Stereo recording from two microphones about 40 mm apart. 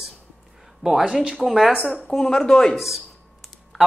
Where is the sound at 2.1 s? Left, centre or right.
Centre.